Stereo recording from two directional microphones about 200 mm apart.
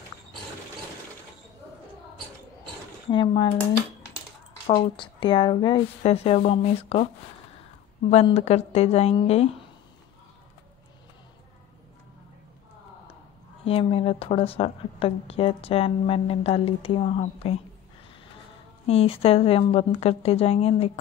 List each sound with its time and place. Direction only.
3.1 s a woman's voice: 25° left (ahead or behind)
4.6 s a woman's voice: 25° left (ahead or behind)
8.1 s a woman's voice: 30° left (ahead or behind)
13.7 s a woman's voice: 30° left (ahead or behind)
18.9 s a woman's voice: 30° left (ahead or behind)